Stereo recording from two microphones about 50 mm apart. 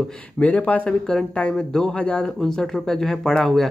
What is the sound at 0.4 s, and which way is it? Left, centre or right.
Speech, left.